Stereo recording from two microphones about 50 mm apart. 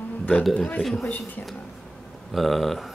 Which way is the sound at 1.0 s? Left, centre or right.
Left.